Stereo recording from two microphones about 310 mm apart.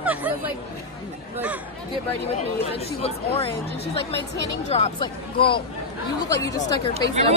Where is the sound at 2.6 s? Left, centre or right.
Centre.